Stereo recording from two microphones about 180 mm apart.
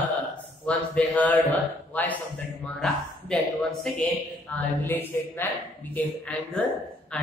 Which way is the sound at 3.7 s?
5° left (ahead or behind).